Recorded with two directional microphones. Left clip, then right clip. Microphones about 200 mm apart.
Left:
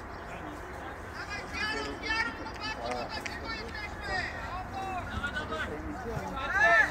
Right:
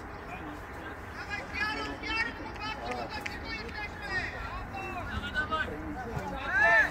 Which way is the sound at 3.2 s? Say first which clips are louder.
Even; 60° right (ahead or behind).